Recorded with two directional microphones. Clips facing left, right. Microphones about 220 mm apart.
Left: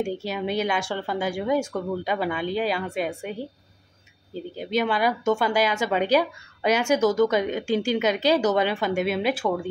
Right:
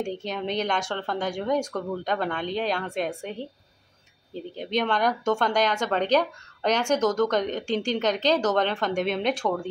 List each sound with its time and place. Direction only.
0.0 s speech: 5° left (ahead or behind)
4.6 s speech: 5° left (ahead or behind)